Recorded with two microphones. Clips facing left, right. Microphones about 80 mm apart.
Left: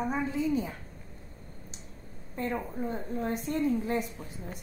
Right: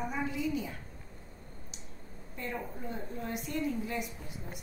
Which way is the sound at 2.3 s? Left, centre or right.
Left.